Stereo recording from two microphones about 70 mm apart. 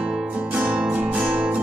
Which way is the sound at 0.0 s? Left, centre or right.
Centre.